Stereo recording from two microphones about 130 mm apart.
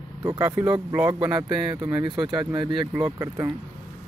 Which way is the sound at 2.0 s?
35° right (ahead or behind).